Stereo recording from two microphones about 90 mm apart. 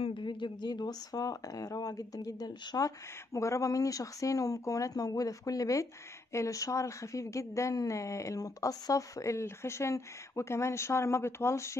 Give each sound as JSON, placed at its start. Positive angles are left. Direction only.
{"t": 0.0, "sound": "a woman's voice", "side_deg": 65}